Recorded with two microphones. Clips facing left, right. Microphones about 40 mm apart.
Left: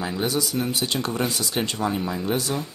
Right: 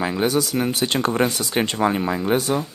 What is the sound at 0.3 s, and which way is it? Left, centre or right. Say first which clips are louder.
Speech: right 4 dB; right.